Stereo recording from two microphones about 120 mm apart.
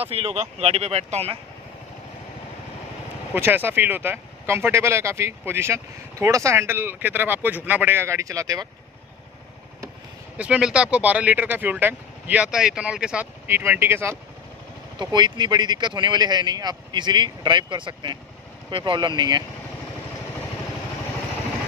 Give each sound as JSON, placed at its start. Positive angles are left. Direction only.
{"t": 0.0, "sound": "speech", "side_deg": -55}
{"t": 3.3, "sound": "speech", "side_deg": -20}
{"t": 10.3, "sound": "speech", "side_deg": -10}
{"t": 13.5, "sound": "speech", "side_deg": -20}
{"t": 15.0, "sound": "speech", "side_deg": -40}